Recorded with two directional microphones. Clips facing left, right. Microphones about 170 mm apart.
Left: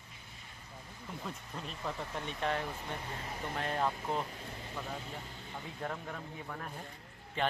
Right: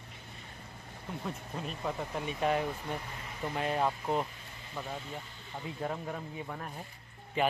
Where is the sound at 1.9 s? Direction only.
10° right (ahead or behind).